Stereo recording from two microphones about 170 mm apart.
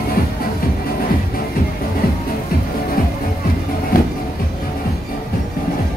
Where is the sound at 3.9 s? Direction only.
55° left (ahead or behind).